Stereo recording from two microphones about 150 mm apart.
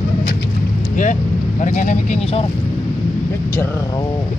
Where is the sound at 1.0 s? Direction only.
55° left (ahead or behind).